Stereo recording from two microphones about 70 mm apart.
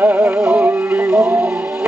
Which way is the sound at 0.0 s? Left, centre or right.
Right.